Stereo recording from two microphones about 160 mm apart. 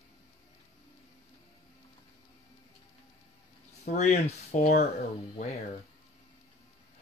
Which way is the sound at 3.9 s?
45° left (ahead or behind).